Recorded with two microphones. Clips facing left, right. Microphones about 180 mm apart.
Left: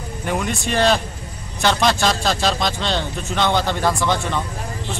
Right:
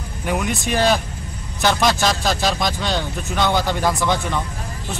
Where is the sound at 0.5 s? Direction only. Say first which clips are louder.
Left 1 dB; 10° right (ahead or behind).